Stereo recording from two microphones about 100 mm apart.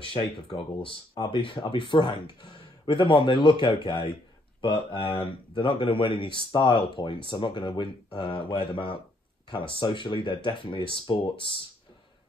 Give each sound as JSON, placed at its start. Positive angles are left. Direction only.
{"t": 0.0, "sound": "speech", "side_deg": 55}